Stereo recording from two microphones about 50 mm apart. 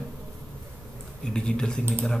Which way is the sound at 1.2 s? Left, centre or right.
Centre.